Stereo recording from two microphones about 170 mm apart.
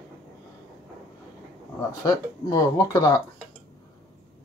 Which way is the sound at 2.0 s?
20° left (ahead or behind).